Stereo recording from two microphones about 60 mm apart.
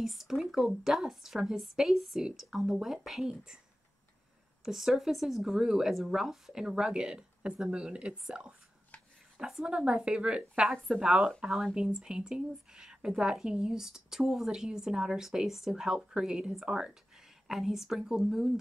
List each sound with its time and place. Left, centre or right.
0.0 s speech: centre
4.6 s speech: centre